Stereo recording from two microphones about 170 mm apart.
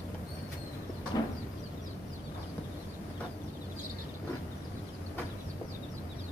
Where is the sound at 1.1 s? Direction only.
25° left (ahead or behind).